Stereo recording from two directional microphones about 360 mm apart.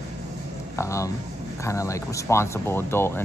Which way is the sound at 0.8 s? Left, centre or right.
Centre.